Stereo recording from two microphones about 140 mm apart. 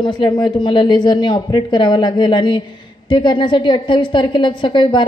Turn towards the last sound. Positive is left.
turn(degrees=35)  # may be behind; listen again after turning